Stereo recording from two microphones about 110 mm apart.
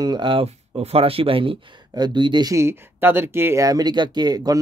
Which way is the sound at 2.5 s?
20° right (ahead or behind).